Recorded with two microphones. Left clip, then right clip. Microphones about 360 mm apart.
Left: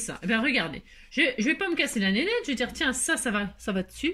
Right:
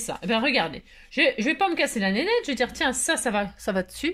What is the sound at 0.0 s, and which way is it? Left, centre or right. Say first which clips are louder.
A woman's voice: right 2 dB; centre.